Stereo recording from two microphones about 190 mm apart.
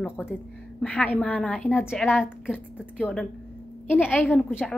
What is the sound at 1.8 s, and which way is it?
A woman's voice, 5° right (ahead or behind).